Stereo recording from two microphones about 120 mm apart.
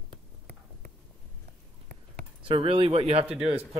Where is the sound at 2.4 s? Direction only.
45° right (ahead or behind).